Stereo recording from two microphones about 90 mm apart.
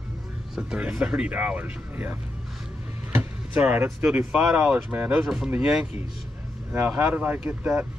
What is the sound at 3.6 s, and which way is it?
Speech, 25° right (ahead or behind).